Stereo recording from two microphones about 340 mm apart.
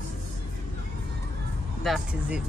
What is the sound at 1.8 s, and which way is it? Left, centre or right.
Speech, centre.